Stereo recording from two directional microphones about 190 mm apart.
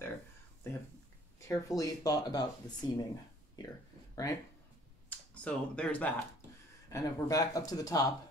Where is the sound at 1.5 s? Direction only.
20° left (ahead or behind).